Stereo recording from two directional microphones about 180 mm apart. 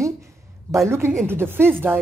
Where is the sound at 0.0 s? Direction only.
15° right (ahead or behind).